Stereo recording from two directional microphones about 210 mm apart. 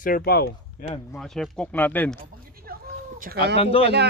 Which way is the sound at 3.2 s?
45° right (ahead or behind).